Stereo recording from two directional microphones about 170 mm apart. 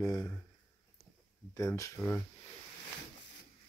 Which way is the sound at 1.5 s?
20° left (ahead or behind).